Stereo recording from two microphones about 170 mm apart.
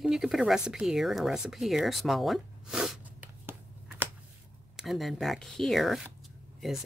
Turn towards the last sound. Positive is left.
turn(degrees=0)  # may be behind; listen again after turning